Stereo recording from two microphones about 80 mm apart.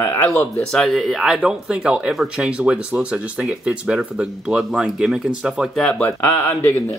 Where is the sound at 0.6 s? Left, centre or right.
Centre.